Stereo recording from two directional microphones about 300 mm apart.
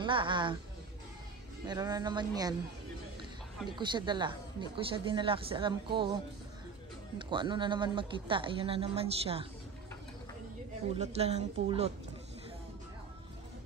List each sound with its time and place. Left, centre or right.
0.0 s speech: centre
1.7 s speech: centre
3.7 s speech: centre
11.0 s speech: right